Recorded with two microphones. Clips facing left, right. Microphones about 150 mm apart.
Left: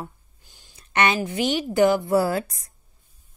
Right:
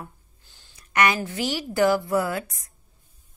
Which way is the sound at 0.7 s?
25° left (ahead or behind).